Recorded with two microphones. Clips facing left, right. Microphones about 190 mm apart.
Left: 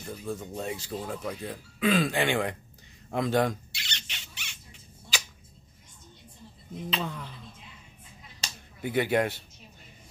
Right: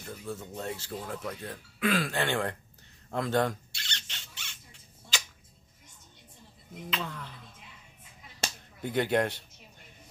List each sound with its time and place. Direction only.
0.0 s speech: 15° left (ahead or behind)
3.8 s rodents: 15° left (ahead or behind)
6.9 s speech: 15° left (ahead or behind)
8.4 s a sound: 50° right (ahead or behind)
8.8 s speech: 5° left (ahead or behind)